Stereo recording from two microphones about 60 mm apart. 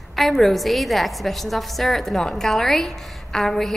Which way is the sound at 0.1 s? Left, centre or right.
Centre.